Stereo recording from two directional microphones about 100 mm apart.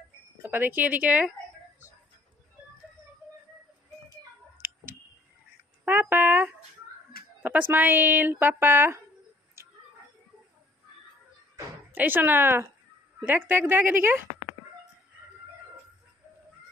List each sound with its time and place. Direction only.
0.4 s speech: 20° right (ahead or behind)
5.9 s a sound: 20° right (ahead or behind)
7.4 s speech: 15° right (ahead or behind)
11.9 s speech: 20° right (ahead or behind)